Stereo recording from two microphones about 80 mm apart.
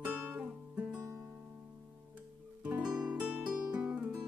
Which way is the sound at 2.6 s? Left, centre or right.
Centre.